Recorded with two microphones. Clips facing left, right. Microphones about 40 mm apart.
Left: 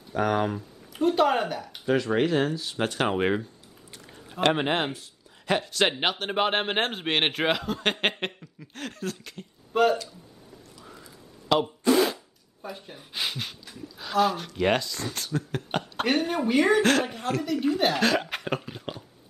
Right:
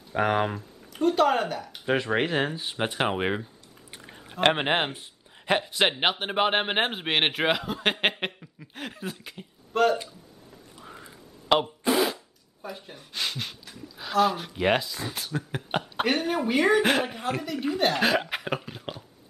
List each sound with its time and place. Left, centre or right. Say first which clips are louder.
0.1 s speech: right 1 dB; right
0.6 s speech: even; centre
1.9 s speech: left 2 dB; right; by 3.4 s centre
3.9 s speech: even; right
9.7 s a sound: left 1 dB; centre
10.8 s music: right 5 dB; right
11.9 s a sound: left 2 dB; centre
12.6 s speech: even; centre